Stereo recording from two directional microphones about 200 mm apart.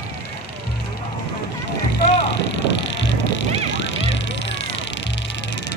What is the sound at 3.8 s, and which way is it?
Music, 65° left (ahead or behind).